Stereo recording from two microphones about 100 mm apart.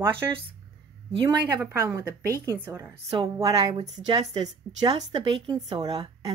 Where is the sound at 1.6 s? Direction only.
30° right (ahead or behind).